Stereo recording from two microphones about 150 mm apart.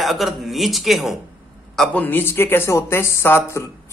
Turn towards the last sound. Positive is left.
turn(degrees=15)  # may be behind; listen again after turning